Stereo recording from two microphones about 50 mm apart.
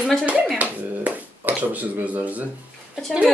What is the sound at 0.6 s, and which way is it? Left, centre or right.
Finger snapping, right.